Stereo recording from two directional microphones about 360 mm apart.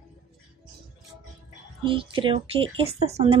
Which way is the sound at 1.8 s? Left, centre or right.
Centre.